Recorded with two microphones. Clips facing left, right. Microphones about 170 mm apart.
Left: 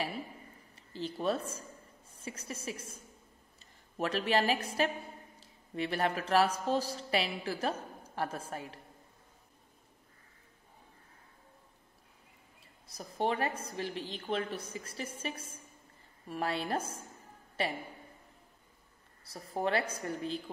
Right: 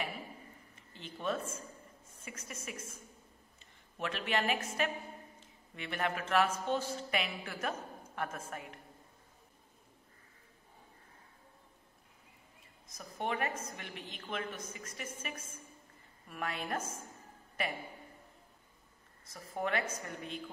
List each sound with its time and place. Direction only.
0.7 s a woman's voice: 35° left (ahead or behind)
4.0 s a woman's voice: 35° left (ahead or behind)
12.8 s a woman's voice: 35° left (ahead or behind)
19.2 s a woman's voice: 35° left (ahead or behind)